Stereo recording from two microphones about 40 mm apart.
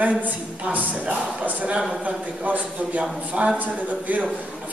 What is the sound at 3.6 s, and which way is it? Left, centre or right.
Speech, right.